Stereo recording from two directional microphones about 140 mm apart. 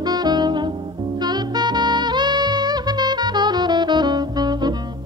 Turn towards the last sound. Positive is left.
turn(degrees=-30)  # may be behind; listen again after turning